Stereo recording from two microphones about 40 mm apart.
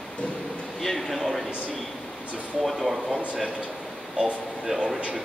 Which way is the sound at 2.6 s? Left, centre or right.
Centre.